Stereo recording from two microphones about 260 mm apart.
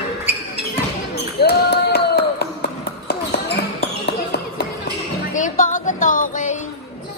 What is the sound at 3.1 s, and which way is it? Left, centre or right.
Basketball bounce, left.